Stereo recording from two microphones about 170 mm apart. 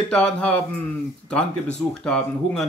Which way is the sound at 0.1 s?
5° left (ahead or behind).